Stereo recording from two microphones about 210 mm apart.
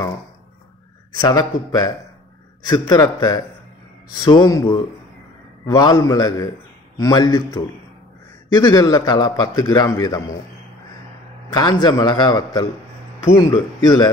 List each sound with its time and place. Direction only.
1.2 s a man's voice: 20° left (ahead or behind)
11.5 s a man's voice: 20° left (ahead or behind)